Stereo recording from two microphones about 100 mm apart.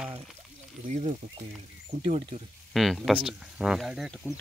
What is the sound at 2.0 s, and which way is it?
Speech, 90° right.